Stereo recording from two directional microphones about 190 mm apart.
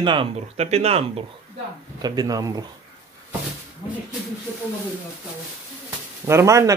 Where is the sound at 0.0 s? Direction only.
25° right (ahead or behind).